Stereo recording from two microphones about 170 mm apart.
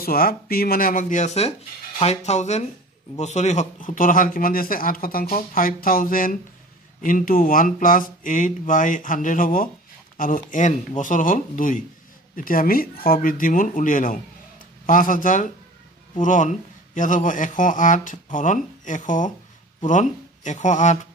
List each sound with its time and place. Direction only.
0.0 s speech: 60° left (ahead or behind); by 21.1 s 45° left (ahead or behind)